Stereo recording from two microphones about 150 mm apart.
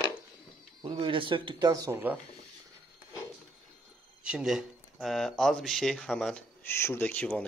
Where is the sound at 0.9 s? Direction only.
35° right (ahead or behind); by 2.1 s 15° right (ahead or behind).